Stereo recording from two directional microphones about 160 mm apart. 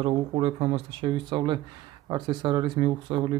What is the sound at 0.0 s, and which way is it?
Speech, 35° right (ahead or behind).